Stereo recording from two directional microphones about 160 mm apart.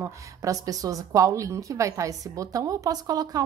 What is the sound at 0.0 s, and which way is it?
A woman's voice, 20° right (ahead or behind).